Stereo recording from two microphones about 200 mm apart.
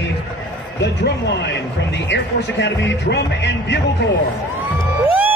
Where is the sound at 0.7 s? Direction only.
60° left (ahead or behind).